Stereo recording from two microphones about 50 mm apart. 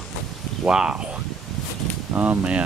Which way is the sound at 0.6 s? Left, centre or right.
Centre.